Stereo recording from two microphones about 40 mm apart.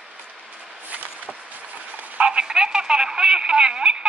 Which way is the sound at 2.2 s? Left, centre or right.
Right.